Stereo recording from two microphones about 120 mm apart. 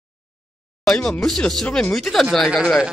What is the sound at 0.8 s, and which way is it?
A man's voice, 5° left (ahead or behind).